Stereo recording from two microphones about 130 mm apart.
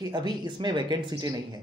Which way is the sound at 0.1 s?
35° right (ahead or behind).